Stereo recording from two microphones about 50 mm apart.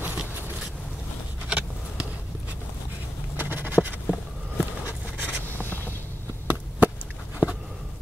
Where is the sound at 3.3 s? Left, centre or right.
Right.